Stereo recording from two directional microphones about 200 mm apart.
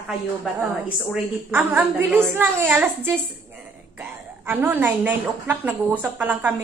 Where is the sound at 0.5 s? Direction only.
5° right (ahead or behind).